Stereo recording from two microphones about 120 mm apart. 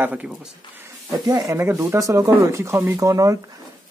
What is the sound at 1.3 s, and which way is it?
Speech, 30° right (ahead or behind).